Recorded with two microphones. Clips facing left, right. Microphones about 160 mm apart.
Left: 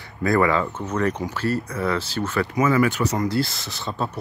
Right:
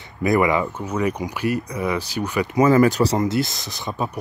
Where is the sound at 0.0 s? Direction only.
20° right (ahead or behind).